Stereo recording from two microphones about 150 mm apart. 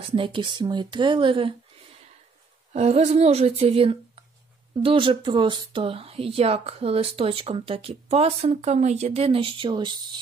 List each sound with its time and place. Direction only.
0.1 s speech: 35° right (ahead or behind)
2.7 s a woman's voice: 45° right (ahead or behind)